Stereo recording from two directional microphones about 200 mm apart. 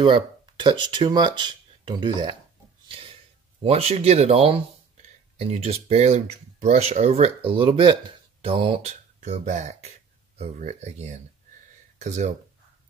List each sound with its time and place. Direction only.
0.0 s speech: 25° right (ahead or behind)
3.6 s speech: 30° right (ahead or behind)